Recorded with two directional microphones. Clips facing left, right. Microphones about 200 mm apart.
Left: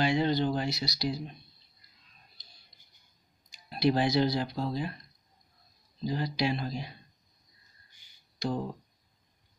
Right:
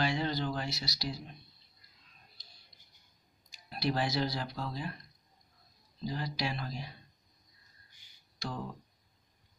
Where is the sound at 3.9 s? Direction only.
20° left (ahead or behind).